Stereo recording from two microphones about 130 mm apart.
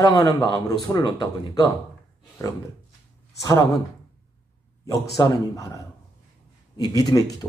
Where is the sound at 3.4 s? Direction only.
25° left (ahead or behind).